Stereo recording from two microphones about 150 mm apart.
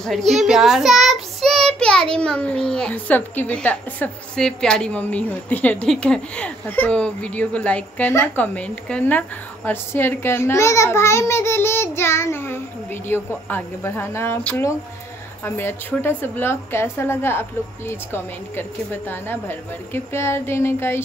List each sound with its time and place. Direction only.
0.3 s child singing: centre (ahead or behind)
2.1 s a woman's voice: 5° left (ahead or behind)